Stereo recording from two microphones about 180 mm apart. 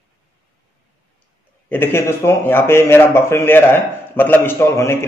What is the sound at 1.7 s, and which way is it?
Speech, 10° left (ahead or behind).